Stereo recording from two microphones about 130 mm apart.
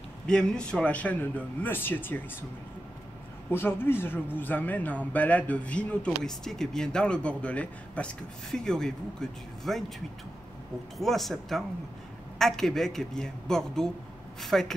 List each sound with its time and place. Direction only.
0.3 s a man's voice: 5° left (ahead or behind)
3.4 s a man's voice: 15° left (ahead or behind); by 14.7 s centre (ahead or behind)